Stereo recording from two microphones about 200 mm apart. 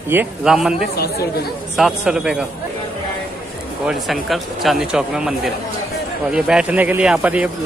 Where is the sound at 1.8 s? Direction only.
5° right (ahead or behind).